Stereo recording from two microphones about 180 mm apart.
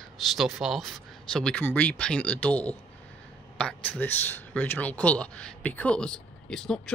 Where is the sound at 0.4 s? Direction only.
Centre (ahead or behind).